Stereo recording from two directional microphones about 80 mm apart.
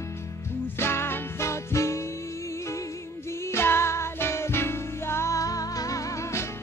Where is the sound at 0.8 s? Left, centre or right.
Left.